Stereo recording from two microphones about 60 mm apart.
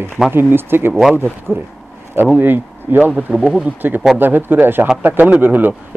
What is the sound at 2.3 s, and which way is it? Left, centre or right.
Speech, right.